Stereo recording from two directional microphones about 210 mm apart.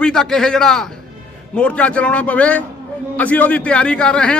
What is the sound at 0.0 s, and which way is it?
A man's voice, centre (ahead or behind).